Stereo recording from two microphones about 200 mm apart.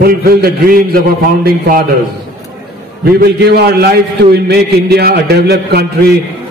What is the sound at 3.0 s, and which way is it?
A man's voice, 50° right (ahead or behind).